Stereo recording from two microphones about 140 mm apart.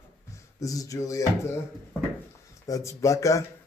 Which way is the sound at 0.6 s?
25° left (ahead or behind).